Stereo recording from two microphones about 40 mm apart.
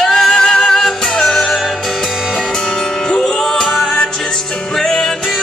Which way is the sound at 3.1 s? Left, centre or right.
Left.